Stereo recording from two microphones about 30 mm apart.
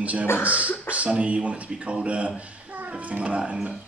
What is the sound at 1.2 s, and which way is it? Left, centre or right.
Speech, right.